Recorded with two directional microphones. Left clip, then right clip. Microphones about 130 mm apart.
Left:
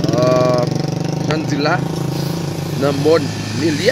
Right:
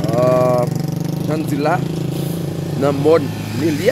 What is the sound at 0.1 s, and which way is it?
Vehicle, 20° right (ahead or behind).